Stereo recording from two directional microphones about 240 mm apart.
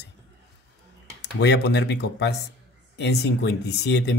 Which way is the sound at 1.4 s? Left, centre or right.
Left.